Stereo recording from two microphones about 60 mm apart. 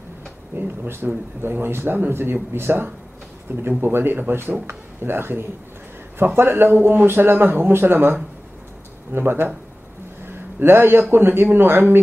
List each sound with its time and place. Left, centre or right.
0.6 s a man's voice: right